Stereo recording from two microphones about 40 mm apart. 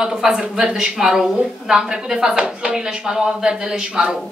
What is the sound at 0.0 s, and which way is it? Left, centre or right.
A woman's voice, centre.